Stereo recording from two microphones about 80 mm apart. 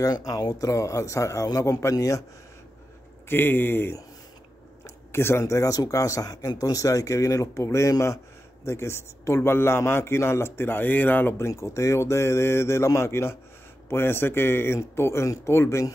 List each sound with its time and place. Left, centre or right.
0.0 s speech: left
3.3 s speech: left
4.8 s a sound: left
5.4 s a man's voice: left
11.4 s a man's voice: left